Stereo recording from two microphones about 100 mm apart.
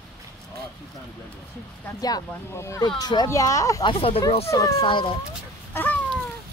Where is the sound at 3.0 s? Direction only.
45° left (ahead or behind).